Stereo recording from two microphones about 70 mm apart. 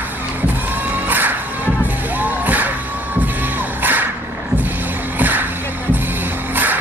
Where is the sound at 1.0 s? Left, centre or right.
Right.